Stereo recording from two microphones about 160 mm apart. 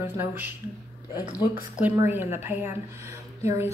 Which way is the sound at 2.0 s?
15° right (ahead or behind).